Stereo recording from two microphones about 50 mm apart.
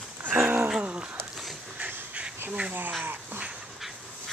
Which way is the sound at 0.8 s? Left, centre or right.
Right.